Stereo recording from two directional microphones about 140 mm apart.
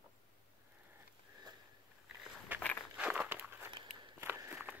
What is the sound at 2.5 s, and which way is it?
Walk, 10° right (ahead or behind).